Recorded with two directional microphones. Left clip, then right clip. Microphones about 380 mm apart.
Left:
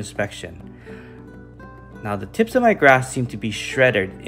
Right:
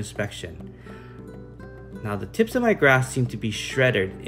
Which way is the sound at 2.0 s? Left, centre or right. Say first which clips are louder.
Left 2 dB; centre.